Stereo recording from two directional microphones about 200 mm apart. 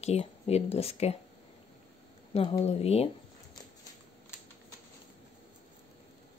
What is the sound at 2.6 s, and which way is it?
Speech, 30° left (ahead or behind).